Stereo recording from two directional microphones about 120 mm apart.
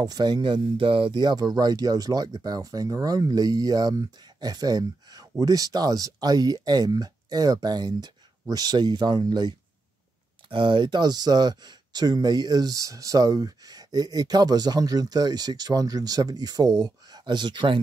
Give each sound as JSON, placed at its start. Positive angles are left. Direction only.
{"t": 0.0, "sound": "speech", "side_deg": -35}